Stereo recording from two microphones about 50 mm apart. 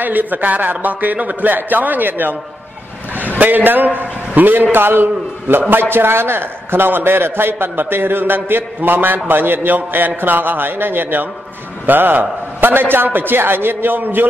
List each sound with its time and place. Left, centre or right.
0.0 s a man's voice: right
3.3 s a man's voice: right